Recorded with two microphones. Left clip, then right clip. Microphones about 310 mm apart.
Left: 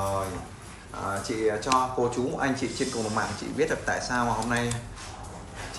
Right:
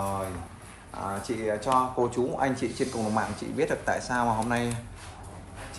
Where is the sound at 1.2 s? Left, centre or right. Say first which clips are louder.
Left 2 dB; right.